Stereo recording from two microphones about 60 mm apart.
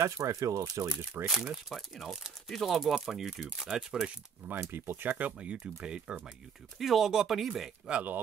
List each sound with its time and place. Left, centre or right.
0.0 s speech: right
0.8 s speech: right
1.2 s speech: centre
4.6 s speech: right; by 6.1 s centre
6.8 s speech: centre
7.9 s speech: right